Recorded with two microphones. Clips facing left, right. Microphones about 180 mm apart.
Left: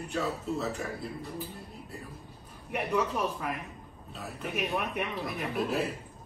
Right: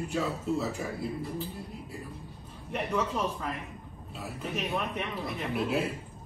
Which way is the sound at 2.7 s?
10° left (ahead or behind).